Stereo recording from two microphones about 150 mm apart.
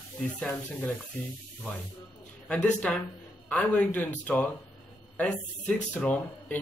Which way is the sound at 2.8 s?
5° left (ahead or behind).